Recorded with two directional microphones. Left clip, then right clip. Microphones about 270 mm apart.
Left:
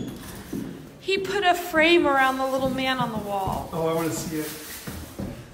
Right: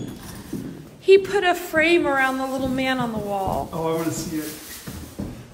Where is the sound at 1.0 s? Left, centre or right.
Centre.